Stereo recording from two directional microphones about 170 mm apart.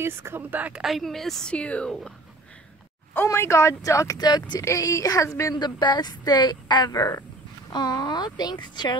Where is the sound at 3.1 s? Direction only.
15° left (ahead or behind).